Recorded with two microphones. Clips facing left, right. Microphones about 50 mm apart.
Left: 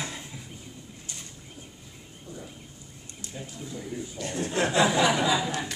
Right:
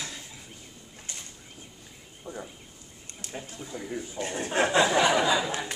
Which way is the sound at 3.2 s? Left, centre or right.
Right.